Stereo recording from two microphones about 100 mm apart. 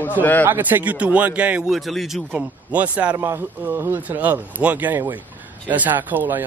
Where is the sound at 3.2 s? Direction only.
25° right (ahead or behind).